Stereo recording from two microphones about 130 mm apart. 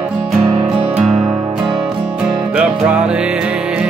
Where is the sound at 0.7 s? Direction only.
10° right (ahead or behind).